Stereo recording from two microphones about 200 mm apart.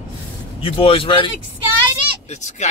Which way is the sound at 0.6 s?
25° left (ahead or behind).